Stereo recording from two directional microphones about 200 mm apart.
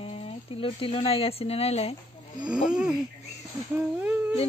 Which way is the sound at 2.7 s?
5° right (ahead or behind).